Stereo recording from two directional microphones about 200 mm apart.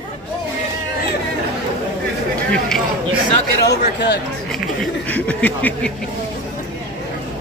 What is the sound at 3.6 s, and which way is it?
Speech, 55° left (ahead or behind).